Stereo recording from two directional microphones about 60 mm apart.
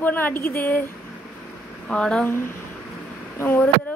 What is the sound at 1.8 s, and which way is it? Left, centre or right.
Speech, centre.